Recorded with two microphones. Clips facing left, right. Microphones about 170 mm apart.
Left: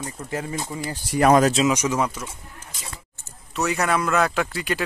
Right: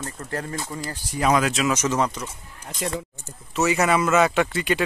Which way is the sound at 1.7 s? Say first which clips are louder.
Even; 10° left (ahead or behind).